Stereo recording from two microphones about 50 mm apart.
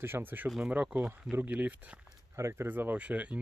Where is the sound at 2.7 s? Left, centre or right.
Right.